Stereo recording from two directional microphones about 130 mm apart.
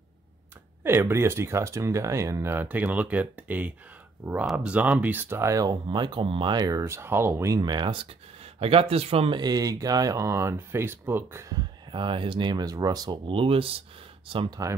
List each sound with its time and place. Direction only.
0.8 s speech: 20° right (ahead or behind); by 9.4 s 50° right (ahead or behind)
9.4 s speech: 30° right (ahead or behind)
11.9 s speech: 40° right (ahead or behind)
13.3 s speech: 45° right (ahead or behind)